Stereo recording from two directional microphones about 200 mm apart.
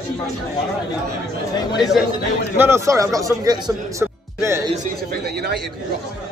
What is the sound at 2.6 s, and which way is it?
Speech, 15° right (ahead or behind).